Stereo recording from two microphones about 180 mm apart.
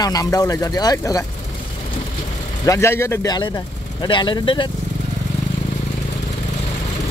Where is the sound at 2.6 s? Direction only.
15° left (ahead or behind).